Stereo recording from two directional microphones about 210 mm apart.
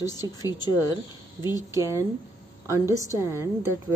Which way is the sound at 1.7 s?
15° right (ahead or behind).